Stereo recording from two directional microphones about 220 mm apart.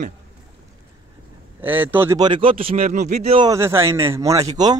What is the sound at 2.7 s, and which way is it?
Speech, 35° right (ahead or behind).